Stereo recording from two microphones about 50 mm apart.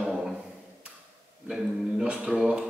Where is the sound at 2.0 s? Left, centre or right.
Right.